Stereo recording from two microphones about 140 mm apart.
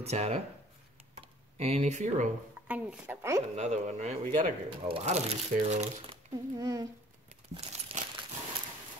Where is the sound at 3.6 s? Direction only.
60° right (ahead or behind).